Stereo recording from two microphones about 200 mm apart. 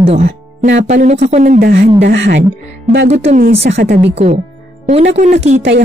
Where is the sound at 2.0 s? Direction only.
60° right (ahead or behind).